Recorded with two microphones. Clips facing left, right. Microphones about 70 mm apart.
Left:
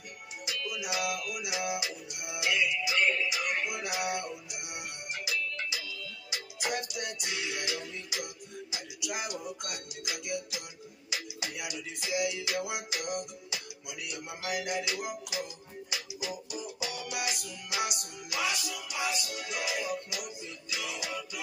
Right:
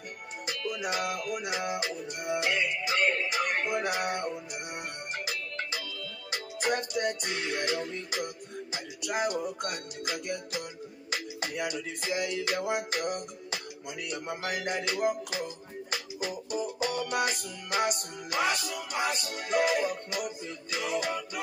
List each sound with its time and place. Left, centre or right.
0.5 s music: right